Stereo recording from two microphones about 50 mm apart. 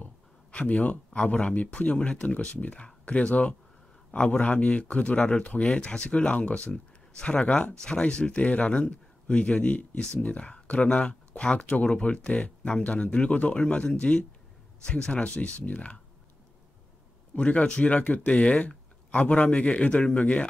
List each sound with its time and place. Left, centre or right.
0.0 s speech: left
2.0 s speech: centre
2.2 s speech: left
17.4 s speech: left